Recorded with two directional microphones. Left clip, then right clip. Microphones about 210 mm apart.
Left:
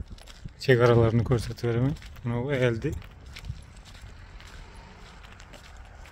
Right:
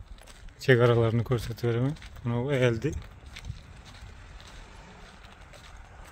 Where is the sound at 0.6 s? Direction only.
10° left (ahead or behind).